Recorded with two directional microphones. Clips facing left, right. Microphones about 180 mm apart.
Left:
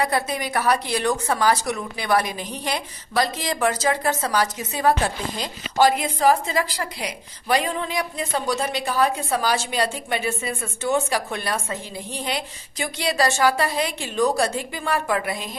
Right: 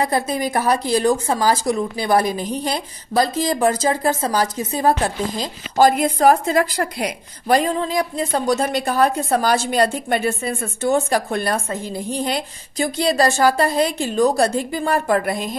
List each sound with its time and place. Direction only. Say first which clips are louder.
0.0 s a woman's voice: right 3 dB; 35° right (ahead or behind)